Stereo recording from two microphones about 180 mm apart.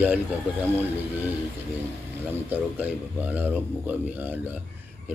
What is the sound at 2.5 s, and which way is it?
Speech, 10° right (ahead or behind).